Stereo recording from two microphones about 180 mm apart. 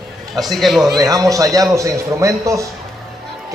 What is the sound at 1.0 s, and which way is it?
A man's voice, 20° right (ahead or behind).